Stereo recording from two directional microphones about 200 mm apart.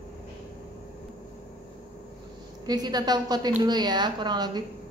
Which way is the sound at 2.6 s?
20° right (ahead or behind).